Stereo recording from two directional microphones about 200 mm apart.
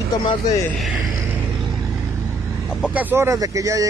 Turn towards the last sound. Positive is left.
turn(degrees=-15)  # may be behind; listen again after turning